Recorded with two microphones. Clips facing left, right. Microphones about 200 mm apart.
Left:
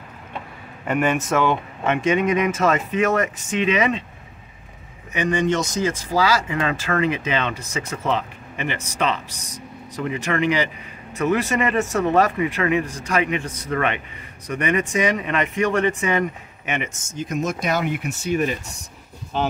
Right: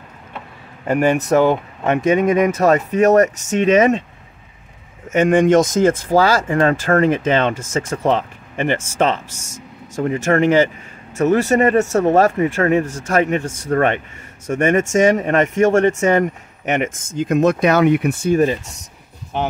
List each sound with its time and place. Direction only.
0.8 s speech: 35° right (ahead or behind)
5.1 s speech: 50° right (ahead or behind)